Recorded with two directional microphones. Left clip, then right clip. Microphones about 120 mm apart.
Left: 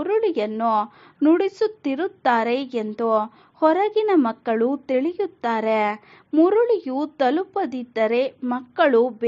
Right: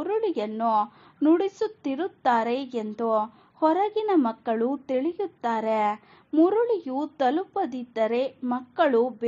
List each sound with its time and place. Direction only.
0.0 s a woman's voice: 30° left (ahead or behind)